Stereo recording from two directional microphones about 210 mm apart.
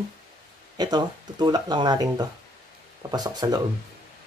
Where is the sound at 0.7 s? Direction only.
20° right (ahead or behind).